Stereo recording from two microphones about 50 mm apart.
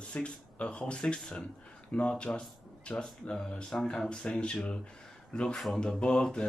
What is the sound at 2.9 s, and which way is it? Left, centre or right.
Speech, centre.